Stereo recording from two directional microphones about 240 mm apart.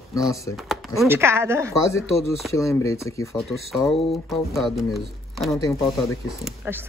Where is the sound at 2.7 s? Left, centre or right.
Centre.